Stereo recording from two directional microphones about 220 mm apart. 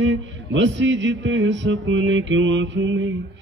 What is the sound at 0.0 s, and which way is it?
Music, 55° right (ahead or behind).